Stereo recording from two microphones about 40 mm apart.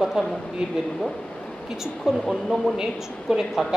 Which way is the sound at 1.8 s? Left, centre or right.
Centre.